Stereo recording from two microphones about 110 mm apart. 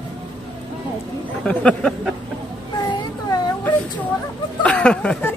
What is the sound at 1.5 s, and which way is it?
Speech, 10° left (ahead or behind).